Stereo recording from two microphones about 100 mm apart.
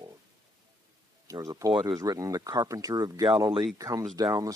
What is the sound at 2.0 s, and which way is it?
Speech, 35° right (ahead or behind).